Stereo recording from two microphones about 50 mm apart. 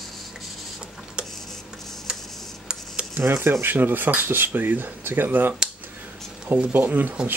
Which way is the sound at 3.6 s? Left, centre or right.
Right.